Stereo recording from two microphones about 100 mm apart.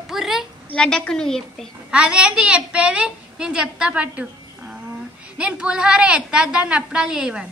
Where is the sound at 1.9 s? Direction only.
10° right (ahead or behind).